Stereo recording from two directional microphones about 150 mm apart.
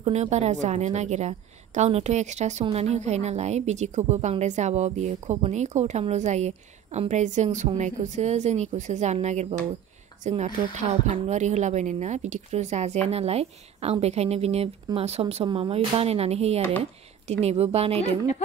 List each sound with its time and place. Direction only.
0.0 s a woman's voice: 50° right (ahead or behind)